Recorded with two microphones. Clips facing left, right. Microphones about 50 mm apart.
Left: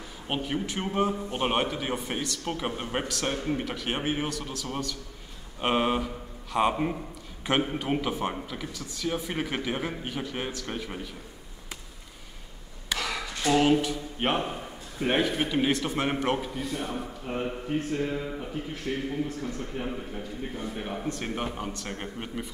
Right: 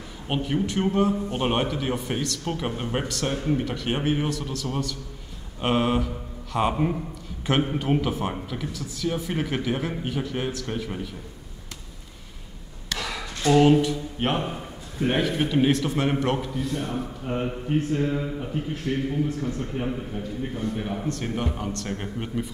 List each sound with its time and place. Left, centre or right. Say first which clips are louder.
0.3 s a man's voice: right 4 dB; centre
12.9 s a sound: even; centre
15.0 s a man's voice: right 2 dB; centre
18.9 s speech: right 4 dB; centre
19.4 s a man's voice: right 5 dB; right
19.8 s a man's voice: right 4 dB; centre